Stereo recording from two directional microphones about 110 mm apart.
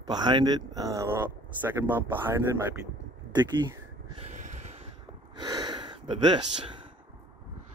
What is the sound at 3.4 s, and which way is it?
Speech, 35° right (ahead or behind).